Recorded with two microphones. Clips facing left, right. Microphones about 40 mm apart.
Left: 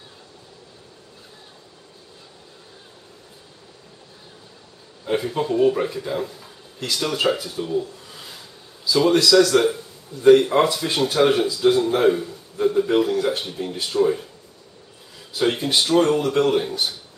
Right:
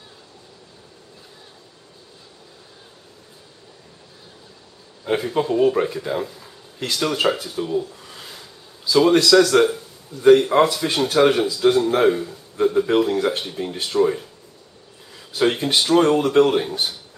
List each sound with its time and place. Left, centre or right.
5.0 s speech: centre
13.1 s speech: centre
15.3 s speech: centre